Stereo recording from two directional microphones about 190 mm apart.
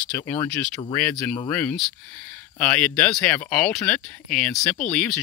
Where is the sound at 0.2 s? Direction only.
15° left (ahead or behind).